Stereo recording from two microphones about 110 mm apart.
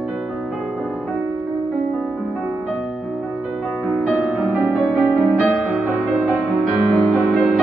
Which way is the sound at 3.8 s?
Centre (ahead or behind).